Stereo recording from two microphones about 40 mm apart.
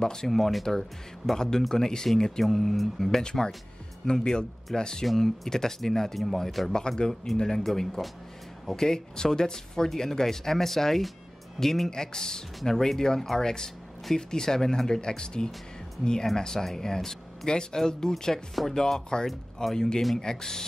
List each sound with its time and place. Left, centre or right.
0.0 s speech: centre
0.3 s speech: centre
3.0 s speech: centre
5.0 s speech: centre